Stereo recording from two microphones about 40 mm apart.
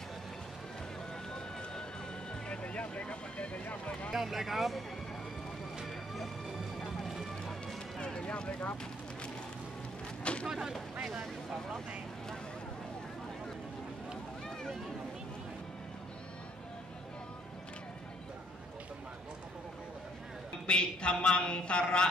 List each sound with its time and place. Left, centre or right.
2.4 s vehicle: left
4.1 s speech: centre
5.9 s music: centre
7.6 s music: left
10.4 s speech: centre
20.6 s speech: left